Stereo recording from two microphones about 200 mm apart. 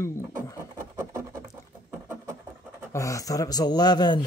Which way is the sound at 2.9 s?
15° left (ahead or behind).